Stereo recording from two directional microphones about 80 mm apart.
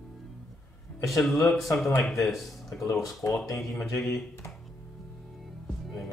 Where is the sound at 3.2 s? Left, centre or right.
Left.